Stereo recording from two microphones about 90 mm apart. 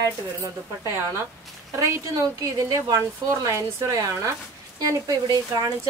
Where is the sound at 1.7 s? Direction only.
35° right (ahead or behind).